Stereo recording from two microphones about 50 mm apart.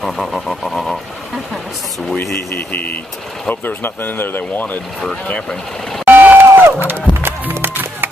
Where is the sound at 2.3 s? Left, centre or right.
Left.